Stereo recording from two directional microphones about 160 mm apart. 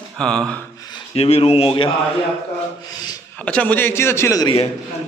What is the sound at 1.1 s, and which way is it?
Speech, 40° left (ahead or behind).